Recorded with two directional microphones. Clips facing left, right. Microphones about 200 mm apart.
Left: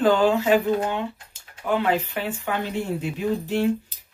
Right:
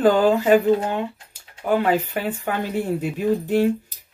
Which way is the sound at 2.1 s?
45° right (ahead or behind).